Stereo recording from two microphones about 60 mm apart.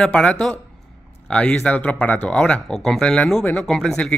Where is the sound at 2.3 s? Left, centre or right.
Centre.